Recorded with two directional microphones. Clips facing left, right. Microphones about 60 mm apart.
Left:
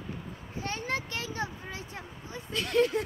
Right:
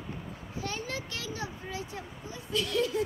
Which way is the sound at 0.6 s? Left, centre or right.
Left.